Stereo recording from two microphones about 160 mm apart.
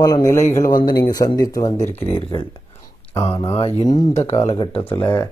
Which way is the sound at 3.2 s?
35° left (ahead or behind).